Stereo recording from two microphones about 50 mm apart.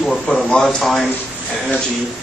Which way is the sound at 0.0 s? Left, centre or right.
Centre.